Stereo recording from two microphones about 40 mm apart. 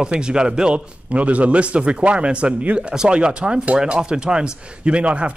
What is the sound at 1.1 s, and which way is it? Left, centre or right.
Speech, right.